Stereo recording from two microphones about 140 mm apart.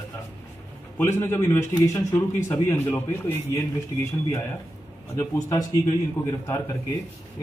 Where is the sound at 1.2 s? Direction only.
20° left (ahead or behind).